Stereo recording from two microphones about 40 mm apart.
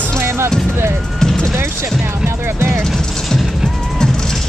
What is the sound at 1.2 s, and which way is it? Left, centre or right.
Music, centre.